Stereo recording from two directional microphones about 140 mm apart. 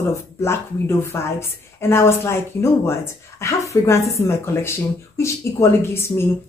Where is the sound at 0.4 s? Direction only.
20° left (ahead or behind).